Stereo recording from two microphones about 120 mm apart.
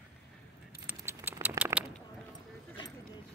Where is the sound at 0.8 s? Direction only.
15° right (ahead or behind).